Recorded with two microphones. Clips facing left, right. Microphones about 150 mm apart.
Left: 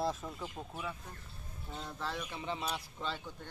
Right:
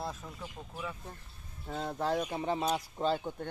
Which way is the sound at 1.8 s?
50° right (ahead or behind).